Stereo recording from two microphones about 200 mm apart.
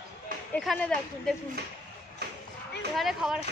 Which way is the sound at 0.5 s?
5° left (ahead or behind).